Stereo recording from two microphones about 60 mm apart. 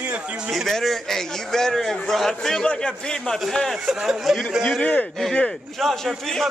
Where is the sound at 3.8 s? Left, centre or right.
Centre.